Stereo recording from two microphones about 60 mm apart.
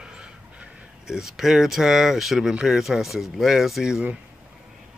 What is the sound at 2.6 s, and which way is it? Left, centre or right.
Speech, centre.